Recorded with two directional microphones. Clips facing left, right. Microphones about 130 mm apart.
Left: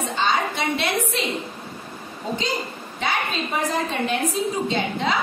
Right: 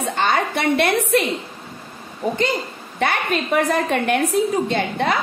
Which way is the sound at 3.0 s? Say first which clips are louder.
Right 5 dB; 60° right (ahead or behind).